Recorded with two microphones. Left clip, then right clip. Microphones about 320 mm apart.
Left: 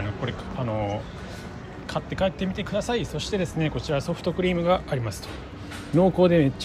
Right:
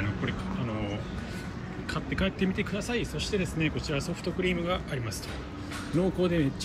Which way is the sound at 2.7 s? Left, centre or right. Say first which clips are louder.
Left 6 dB; left.